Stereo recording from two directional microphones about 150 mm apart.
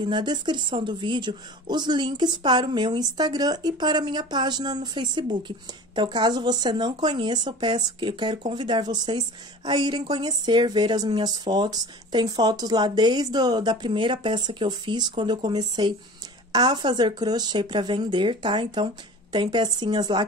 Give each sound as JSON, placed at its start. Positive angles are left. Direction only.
{"t": 0.0, "sound": "speech", "side_deg": -30}